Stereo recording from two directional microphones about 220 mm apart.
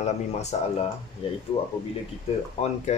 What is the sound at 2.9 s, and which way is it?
Speech, 30° left (ahead or behind).